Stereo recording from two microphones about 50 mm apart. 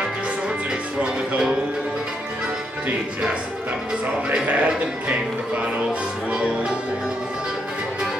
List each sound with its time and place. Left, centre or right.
0.7 s music: centre
4.5 s speech: right
6.3 s music: centre